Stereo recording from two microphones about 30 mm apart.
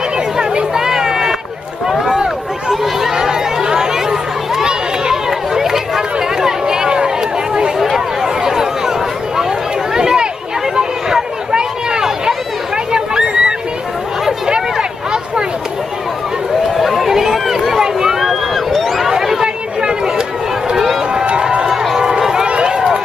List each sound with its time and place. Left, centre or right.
0.7 s run: centre
2.7 s chatter: centre
6.4 s a sound: centre
7.8 s a sound: centre
9.9 s chatter: right
11.5 s a sound: right
16.7 s run: centre
18.2 s a sound: centre
19.0 s chatter: centre
19.8 s chatter: right
20.7 s run: centre
21.1 s run: right
22.2 s run: centre
22.5 s run: right